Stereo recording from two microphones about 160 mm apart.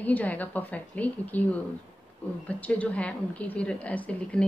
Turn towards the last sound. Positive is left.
turn(degrees=10)  # may be behind; listen again after turning